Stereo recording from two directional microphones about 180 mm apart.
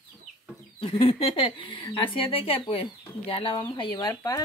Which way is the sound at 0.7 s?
30° left (ahead or behind).